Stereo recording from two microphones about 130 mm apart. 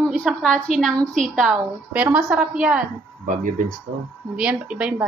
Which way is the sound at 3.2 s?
80° right.